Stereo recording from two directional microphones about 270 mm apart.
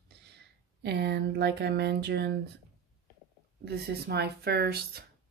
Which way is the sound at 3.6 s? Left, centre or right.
Right.